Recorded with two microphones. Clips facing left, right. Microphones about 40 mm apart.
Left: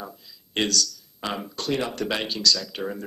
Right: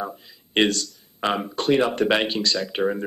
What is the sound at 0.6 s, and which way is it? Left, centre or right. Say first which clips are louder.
Speech: right 4 dB; right.